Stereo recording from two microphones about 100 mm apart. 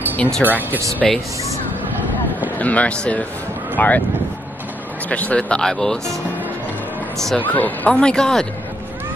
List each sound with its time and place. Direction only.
0.1 s music: 15° left (ahead or behind)
0.4 s speech: 20° right (ahead or behind)
1.0 s speech: 5° left (ahead or behind)
2.6 s speech: 15° left (ahead or behind)
5.1 s speech: 15° left (ahead or behind)
7.3 s speech: 15° left (ahead or behind)